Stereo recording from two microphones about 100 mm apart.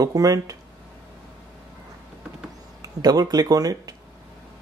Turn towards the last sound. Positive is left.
turn(degrees=-40)  # may be behind; listen again after turning